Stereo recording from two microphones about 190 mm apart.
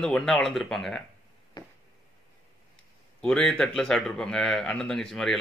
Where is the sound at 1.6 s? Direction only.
25° left (ahead or behind).